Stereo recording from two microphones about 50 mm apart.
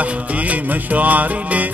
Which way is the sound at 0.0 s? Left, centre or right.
Right.